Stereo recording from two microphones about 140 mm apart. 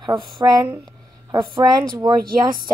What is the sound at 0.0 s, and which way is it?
Speech, 30° right (ahead or behind).